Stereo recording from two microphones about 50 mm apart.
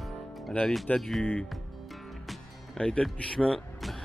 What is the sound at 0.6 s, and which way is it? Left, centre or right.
Speech, left.